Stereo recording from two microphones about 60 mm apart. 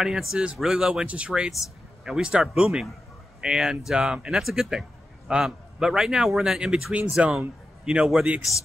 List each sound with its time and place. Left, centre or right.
0.0 s a man's voice: centre
1.0 s a man's voice: right